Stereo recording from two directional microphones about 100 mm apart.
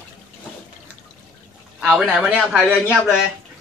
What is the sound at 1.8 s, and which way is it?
Speech, 10° right (ahead or behind).